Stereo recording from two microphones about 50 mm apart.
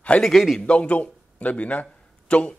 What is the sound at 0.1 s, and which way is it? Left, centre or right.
A man's voice, left.